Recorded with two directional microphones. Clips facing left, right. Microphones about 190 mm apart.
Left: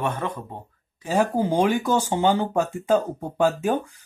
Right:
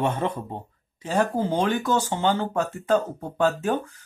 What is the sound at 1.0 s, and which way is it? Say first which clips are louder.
Speech: left 2 dB; 10° left (ahead or behind).